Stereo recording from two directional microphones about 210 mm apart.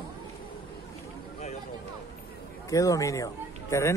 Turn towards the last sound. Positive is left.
turn(degrees=15)  # may be behind; listen again after turning